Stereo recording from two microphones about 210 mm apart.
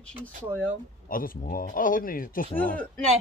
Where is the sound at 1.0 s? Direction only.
40° left (ahead or behind).